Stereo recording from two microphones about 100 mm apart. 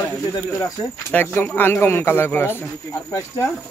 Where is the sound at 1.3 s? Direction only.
20° left (ahead or behind).